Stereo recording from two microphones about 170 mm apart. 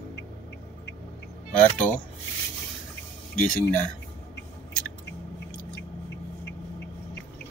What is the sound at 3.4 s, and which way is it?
Speech, 5° left (ahead or behind).